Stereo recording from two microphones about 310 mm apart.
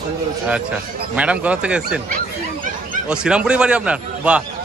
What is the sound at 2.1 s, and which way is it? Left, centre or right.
Dog, right.